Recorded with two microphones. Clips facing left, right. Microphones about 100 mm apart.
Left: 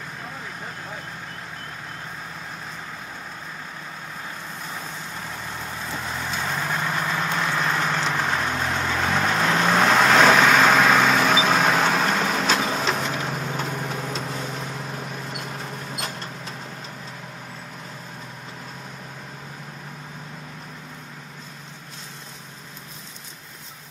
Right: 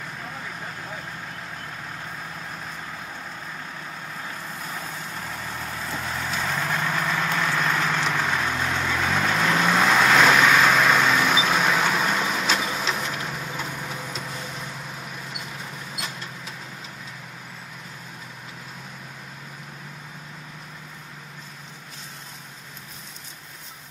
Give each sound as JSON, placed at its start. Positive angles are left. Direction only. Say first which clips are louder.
{"t": 4.6, "sound": "vehicle", "louder": "even", "side_deg": -5}
{"t": 13.0, "sound": "a sound", "louder": "left 3 dB", "side_deg": 0}
{"t": 13.8, "sound": "vehicle", "louder": "left 4 dB", "side_deg": 0}